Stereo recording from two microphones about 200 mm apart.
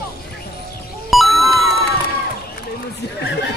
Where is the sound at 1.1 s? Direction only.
Centre (ahead or behind).